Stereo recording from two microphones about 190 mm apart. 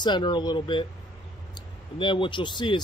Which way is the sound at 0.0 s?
25° left (ahead or behind).